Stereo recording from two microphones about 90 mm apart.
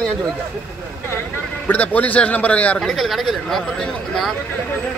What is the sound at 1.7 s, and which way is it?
A man's voice, 20° left (ahead or behind).